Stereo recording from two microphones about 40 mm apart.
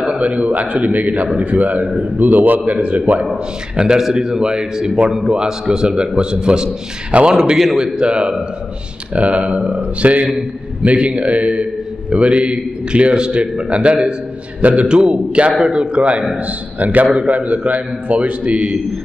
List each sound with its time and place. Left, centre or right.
0.0 s a man's voice: right
3.7 s a man's voice: centre
7.5 s a man's voice: centre
7.8 s a man's voice: right
9.1 s a man's voice: right
14.9 s a man's voice: right
16.8 s a man's voice: right